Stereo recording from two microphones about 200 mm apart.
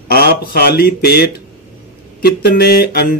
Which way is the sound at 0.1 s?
50° left (ahead or behind).